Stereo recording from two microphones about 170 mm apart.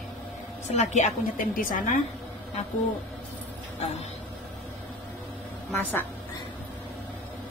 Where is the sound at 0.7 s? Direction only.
45° left (ahead or behind).